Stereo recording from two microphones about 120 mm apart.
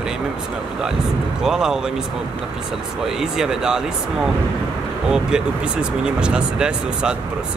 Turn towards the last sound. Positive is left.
turn(degrees=-5)  # may be behind; listen again after turning